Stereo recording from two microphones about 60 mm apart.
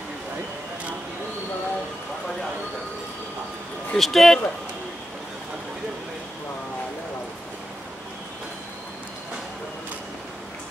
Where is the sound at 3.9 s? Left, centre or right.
Centre.